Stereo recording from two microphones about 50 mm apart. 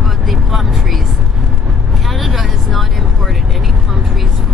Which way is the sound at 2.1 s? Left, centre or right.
Centre.